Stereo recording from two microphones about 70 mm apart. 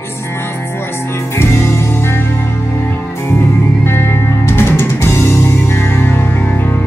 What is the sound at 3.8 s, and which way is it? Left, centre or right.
Music, left.